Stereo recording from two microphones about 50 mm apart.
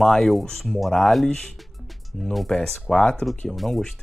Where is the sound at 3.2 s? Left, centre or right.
Centre.